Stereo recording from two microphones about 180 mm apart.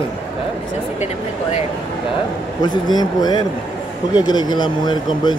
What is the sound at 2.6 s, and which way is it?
Speech, 25° left (ahead or behind).